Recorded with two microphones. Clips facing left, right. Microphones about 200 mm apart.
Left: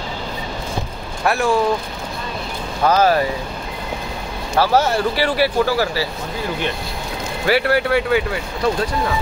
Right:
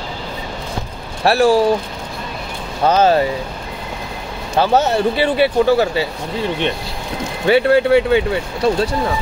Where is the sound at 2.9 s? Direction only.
25° right (ahead or behind).